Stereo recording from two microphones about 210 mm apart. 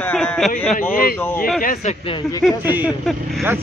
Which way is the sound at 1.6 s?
35° left (ahead or behind).